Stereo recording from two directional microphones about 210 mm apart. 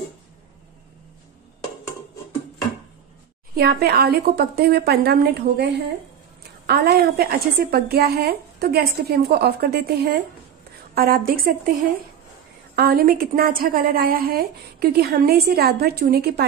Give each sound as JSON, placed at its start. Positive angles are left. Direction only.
{"t": 3.5, "sound": "a woman's voice", "side_deg": -50}
{"t": 12.7, "sound": "a woman's voice", "side_deg": -45}